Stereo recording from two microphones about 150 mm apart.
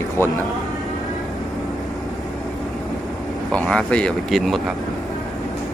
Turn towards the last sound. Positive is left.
turn(degrees=0)  # may be behind; listen again after turning